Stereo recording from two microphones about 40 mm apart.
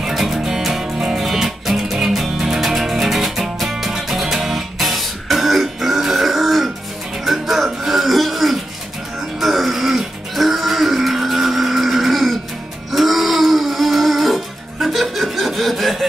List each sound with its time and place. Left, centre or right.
0.0 s music: centre